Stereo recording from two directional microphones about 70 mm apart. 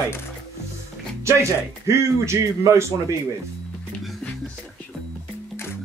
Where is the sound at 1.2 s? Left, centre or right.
Right.